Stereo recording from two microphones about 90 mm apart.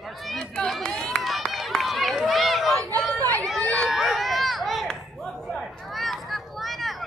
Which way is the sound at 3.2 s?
40° right (ahead or behind).